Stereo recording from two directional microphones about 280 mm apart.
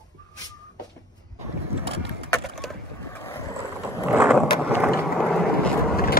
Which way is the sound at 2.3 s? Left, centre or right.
Centre.